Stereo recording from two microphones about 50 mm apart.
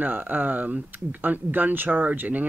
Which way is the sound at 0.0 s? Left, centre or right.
Right.